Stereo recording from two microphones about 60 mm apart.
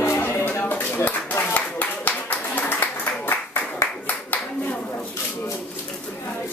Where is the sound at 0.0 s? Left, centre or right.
Left.